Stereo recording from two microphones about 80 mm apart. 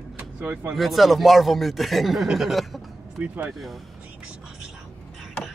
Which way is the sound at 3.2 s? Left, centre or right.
Centre.